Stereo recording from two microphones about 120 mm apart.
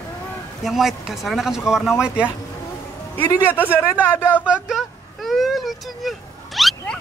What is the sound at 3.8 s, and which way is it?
Speech, 20° left (ahead or behind).